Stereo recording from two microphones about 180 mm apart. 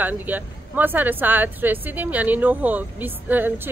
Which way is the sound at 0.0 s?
10° right (ahead or behind).